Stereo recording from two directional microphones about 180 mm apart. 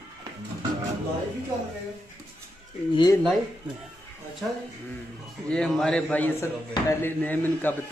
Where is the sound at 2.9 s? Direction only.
25° left (ahead or behind).